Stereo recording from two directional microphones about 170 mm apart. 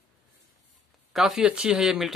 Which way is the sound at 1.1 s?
Centre (ahead or behind).